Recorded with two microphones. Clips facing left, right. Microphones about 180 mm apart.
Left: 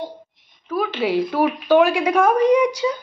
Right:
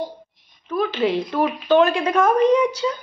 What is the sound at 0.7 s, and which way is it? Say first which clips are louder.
A woman's voice: right 1 dB; 5° left (ahead or behind).